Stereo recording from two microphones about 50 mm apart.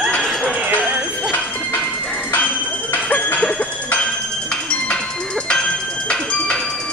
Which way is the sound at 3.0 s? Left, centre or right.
Left.